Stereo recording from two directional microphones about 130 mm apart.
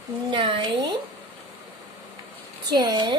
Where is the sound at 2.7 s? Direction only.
35° right (ahead or behind).